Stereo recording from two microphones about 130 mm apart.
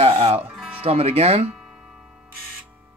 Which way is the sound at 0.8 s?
55° right (ahead or behind).